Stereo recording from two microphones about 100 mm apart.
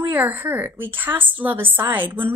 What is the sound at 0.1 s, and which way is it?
A woman's voice, 15° right (ahead or behind).